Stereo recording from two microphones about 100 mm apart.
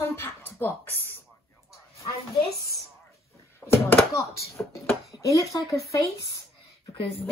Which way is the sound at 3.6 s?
25° left (ahead or behind).